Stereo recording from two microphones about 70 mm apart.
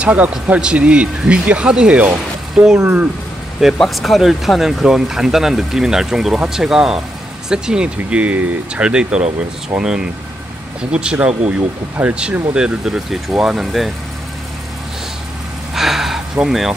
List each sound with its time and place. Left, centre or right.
0.0 s speech: centre
2.5 s speech: centre
3.7 s speech: centre
15.7 s a sound: centre
16.4 s speech: centre